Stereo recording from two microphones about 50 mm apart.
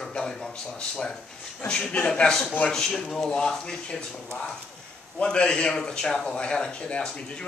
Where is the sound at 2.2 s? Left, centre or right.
Centre.